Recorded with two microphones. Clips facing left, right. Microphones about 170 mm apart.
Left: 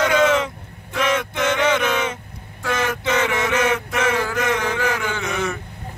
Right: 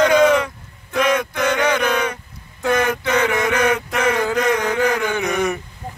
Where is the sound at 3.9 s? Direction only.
15° right (ahead or behind).